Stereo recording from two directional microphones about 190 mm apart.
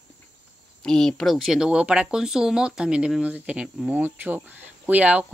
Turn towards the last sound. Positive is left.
turn(degrees=-5)  # may be behind; listen again after turning